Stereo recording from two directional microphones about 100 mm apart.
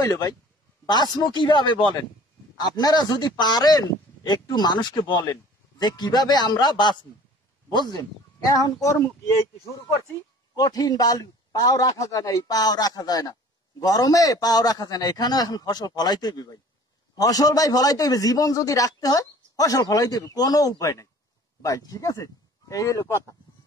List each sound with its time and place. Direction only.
0.0 s speech: 40° left (ahead or behind)
10.5 s speech: 40° left (ahead or behind)